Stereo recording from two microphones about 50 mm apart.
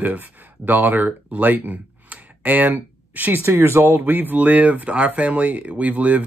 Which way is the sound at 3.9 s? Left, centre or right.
Right.